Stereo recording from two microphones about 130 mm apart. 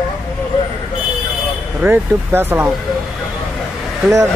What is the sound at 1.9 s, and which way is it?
Speech, 15° right (ahead or behind).